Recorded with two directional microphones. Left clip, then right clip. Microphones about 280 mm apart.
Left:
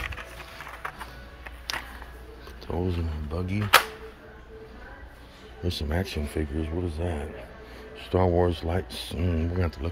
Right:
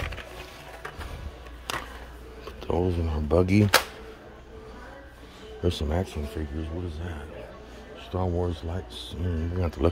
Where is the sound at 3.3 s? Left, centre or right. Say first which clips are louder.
Right 12 dB; centre.